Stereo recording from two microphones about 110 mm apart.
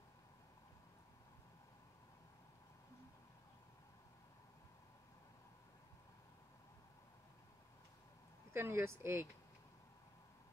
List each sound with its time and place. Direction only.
8.5 s speech: 20° right (ahead or behind)